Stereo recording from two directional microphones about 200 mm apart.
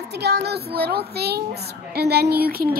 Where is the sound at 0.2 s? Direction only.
55° right (ahead or behind).